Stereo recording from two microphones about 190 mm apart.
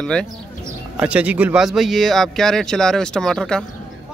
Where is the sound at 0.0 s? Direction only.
5° left (ahead or behind).